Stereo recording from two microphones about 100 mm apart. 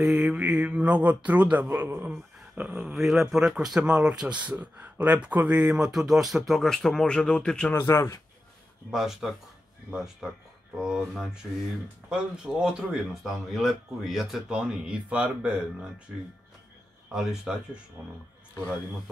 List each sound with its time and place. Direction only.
0.0 s speech: 10° right (ahead or behind); by 7.7 s 10° left (ahead or behind)
7.8 s speech: 30° left (ahead or behind)
8.9 s speech: 5° right (ahead or behind)
17.1 s speech: 5° right (ahead or behind)